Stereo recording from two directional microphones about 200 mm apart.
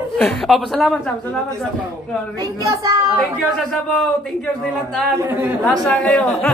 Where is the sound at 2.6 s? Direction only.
15° right (ahead or behind).